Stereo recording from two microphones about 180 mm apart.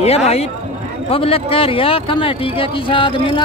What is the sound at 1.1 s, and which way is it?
Speech, 30° left (ahead or behind).